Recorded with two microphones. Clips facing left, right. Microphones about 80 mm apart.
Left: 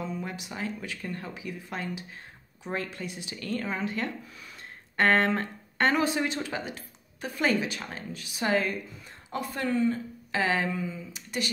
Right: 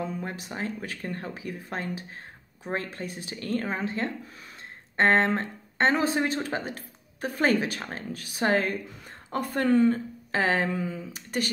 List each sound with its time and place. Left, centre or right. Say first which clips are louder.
0.0 s speech: right 2 dB; right
10.3 s speech: right 2 dB; right
10.7 s speech: right 2 dB; right